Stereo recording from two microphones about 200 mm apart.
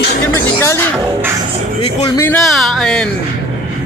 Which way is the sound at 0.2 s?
10° left (ahead or behind).